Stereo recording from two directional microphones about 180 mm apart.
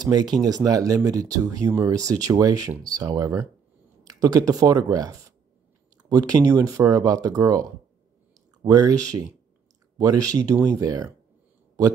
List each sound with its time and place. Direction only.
0.0 s speech: 25° right (ahead or behind)
8.6 s speech: 20° right (ahead or behind)